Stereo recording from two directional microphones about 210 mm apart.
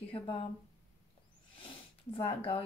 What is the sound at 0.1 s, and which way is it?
Speech, 25° left (ahead or behind).